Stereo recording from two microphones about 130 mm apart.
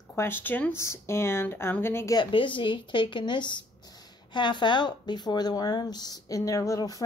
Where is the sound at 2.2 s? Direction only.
40° left (ahead or behind).